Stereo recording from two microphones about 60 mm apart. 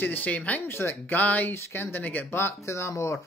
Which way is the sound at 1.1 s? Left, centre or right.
Left.